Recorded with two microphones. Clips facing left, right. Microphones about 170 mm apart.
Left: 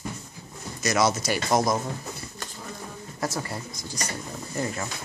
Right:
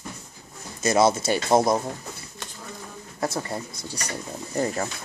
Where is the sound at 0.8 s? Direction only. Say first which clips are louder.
Right 4 dB; 30° right (ahead or behind).